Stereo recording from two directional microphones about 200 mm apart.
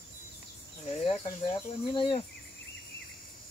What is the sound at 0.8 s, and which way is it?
Cricket, 30° left (ahead or behind).